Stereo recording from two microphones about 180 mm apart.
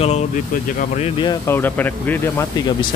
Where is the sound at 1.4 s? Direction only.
10° left (ahead or behind).